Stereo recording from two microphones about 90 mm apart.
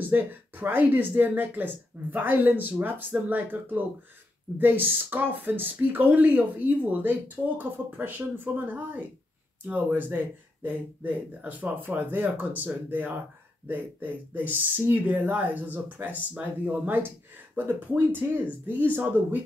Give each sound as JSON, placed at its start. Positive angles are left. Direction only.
{"t": 0.1, "sound": "speech", "side_deg": -20}